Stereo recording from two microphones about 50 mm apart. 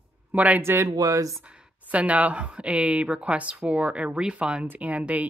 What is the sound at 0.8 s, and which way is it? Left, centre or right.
Speech, right.